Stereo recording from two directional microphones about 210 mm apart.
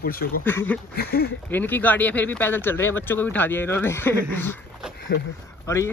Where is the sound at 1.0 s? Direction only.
50° left (ahead or behind).